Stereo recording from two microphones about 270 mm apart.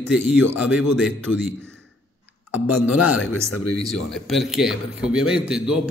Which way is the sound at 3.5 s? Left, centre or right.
Left.